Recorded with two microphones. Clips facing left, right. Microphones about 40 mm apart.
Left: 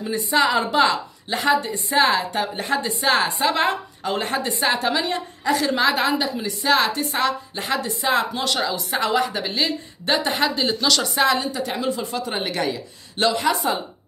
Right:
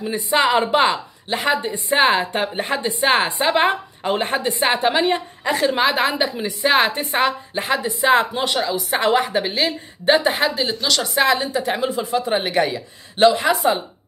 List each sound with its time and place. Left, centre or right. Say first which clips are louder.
0.0 s a woman's voice: right 1 dB; centre
0.6 s a woman's voice: right 2 dB; right
7.9 s a woman's voice: right 6 dB; centre
8.5 s a woman's voice: right 2 dB; centre
9.0 s a woman's voice: right 4 dB; right
10.5 s a woman's voice: even; centre; by 11.8 s right
11.8 s speech: right 4 dB; centre